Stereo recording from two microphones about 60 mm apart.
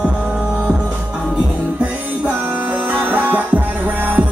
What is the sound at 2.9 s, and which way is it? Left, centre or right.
Music, right.